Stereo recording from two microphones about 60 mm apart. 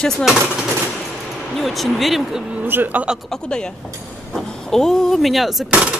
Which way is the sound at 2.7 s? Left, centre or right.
Right.